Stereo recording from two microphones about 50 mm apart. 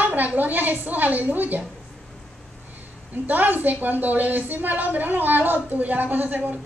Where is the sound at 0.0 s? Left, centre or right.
Right.